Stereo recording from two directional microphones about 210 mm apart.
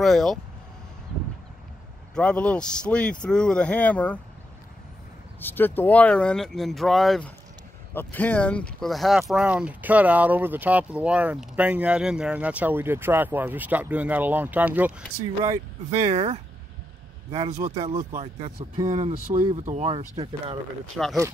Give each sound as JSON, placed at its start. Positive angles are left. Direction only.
{"t": 0.0, "sound": "speech", "side_deg": 0}
{"t": 2.1, "sound": "speech", "side_deg": 5}
{"t": 5.4, "sound": "speech", "side_deg": 10}
{"t": 15.4, "sound": "speech", "side_deg": -35}
{"t": 21.0, "sound": "speech", "side_deg": 0}